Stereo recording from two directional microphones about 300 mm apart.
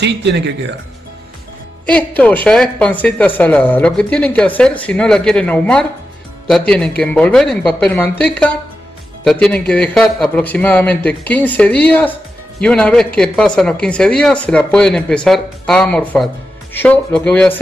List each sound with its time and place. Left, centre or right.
0.0 s speech: right
1.9 s a man's voice: centre